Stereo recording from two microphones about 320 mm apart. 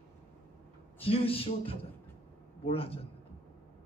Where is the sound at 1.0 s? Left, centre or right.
Centre.